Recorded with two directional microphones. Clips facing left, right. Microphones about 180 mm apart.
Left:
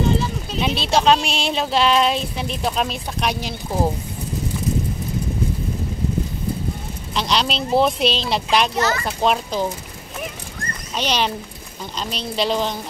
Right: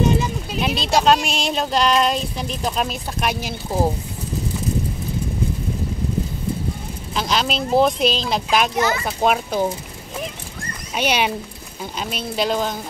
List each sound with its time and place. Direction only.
0.0 s a sound: 15° right (ahead or behind)
0.6 s speech: centre (ahead or behind)
7.2 s speech: centre (ahead or behind)
8.7 s a child's voice: 15° right (ahead or behind)
11.0 s a child's voice: 10° right (ahead or behind)